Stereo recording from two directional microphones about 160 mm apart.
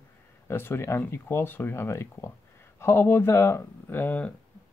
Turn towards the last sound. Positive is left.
turn(degrees=10)  # may be behind; listen again after turning